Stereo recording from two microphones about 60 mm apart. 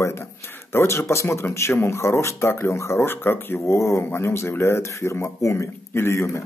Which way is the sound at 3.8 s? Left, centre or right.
Left.